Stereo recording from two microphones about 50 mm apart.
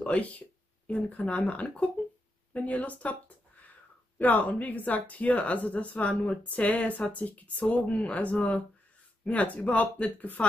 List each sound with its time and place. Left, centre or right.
0.1 s speech: left
4.2 s speech: left